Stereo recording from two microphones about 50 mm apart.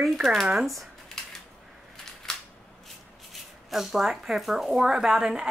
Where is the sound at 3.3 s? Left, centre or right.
Centre.